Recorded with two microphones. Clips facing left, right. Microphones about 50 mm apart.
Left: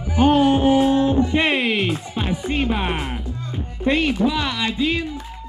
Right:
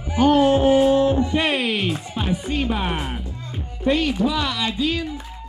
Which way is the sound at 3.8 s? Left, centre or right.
Left.